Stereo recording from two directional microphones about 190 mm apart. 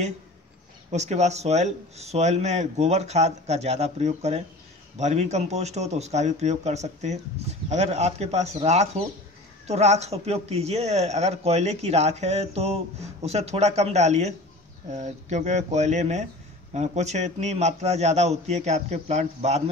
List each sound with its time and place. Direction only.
0.9 s speech: 35° right (ahead or behind)